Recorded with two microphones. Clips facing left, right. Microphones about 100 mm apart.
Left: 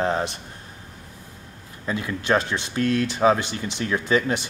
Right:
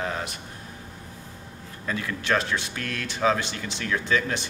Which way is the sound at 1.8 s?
20° left (ahead or behind).